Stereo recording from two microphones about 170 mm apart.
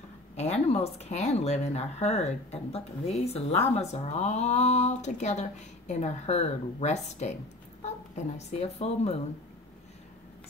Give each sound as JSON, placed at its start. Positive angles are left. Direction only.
{"t": 0.4, "sound": "speech", "side_deg": 40}
{"t": 8.5, "sound": "speech", "side_deg": 40}